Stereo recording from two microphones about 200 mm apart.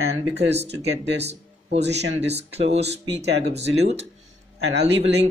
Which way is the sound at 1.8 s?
60° right (ahead or behind).